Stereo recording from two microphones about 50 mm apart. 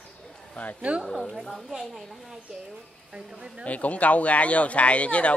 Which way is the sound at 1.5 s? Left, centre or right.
Centre.